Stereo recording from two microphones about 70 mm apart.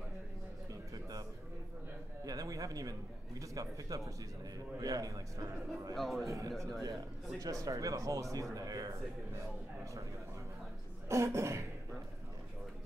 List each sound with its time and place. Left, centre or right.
2.2 s a sound: right
4.7 s a man's voice: right
5.9 s a man's voice: centre
6.2 s cough: right
7.3 s a man's voice: right
11.1 s cough: right